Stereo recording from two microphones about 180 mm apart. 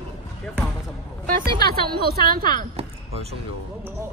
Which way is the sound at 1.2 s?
55° right (ahead or behind).